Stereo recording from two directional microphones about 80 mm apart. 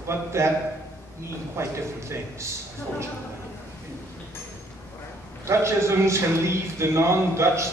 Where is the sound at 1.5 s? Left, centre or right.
Right.